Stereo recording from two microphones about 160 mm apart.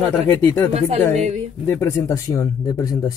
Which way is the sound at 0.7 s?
40° right (ahead or behind).